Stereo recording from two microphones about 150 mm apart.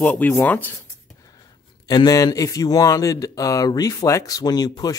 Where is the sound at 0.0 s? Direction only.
10° left (ahead or behind).